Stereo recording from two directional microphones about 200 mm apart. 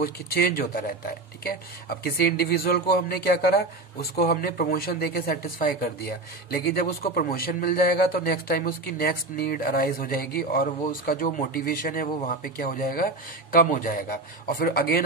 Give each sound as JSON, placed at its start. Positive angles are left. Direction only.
{"t": 0.0, "sound": "speech", "side_deg": 50}